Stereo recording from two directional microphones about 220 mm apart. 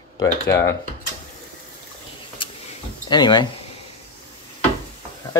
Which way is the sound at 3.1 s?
20° left (ahead or behind).